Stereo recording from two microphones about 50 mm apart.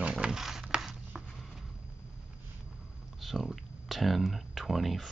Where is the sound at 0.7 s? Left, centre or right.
Centre.